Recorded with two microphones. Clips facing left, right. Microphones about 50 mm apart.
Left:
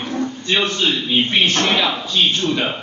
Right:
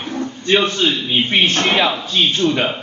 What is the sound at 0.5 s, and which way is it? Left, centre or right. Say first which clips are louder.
A man's voice: right 3 dB; right.